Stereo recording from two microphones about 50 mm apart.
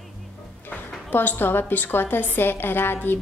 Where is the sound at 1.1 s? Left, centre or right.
Left.